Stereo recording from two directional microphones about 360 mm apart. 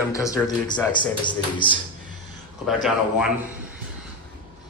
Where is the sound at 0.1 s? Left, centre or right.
Centre.